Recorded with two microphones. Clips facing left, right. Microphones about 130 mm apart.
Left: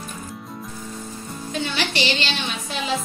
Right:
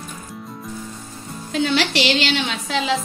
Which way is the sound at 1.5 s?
90° right.